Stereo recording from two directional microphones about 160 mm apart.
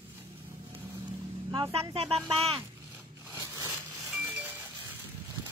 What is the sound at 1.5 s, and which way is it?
Speech, 30° right (ahead or behind).